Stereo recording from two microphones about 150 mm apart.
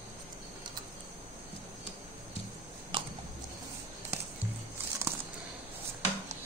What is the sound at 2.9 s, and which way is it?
Chewing, 35° right (ahead or behind).